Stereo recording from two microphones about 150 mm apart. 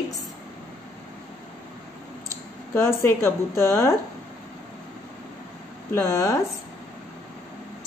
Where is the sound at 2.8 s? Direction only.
15° left (ahead or behind).